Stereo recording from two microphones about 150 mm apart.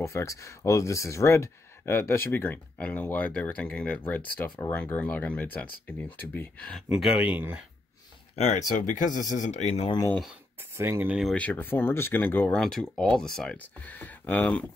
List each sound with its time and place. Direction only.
0.0 s speech: 20° left (ahead or behind)
6.9 s speech: 5° right (ahead or behind)
8.4 s speech: 55° left (ahead or behind)
10.6 s speech: 15° right (ahead or behind)
11.1 s speech: 5° left (ahead or behind)